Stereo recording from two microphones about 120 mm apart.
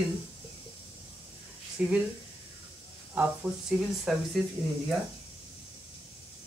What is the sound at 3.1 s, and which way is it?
Speech, 10° right (ahead or behind).